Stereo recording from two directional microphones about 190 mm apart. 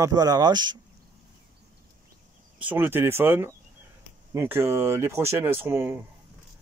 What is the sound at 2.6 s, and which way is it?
Speech, 10° right (ahead or behind).